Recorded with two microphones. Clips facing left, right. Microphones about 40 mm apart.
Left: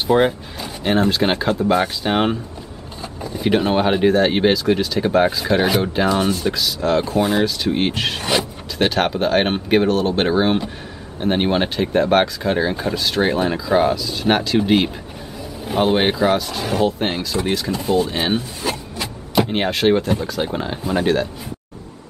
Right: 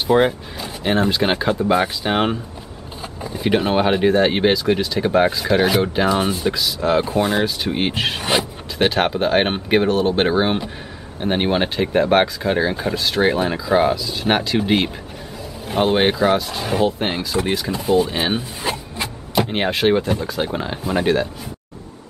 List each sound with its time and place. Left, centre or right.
0.0 s speech: centre
18.6 s printer: right
19.3 s speech: centre